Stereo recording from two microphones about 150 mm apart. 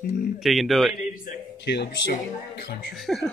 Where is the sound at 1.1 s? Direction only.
80° left.